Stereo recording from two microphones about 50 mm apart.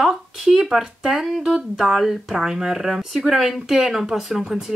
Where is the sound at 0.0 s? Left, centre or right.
Centre.